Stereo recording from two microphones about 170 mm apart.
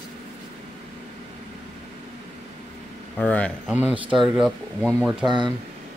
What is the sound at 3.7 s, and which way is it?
Speech, 10° right (ahead or behind).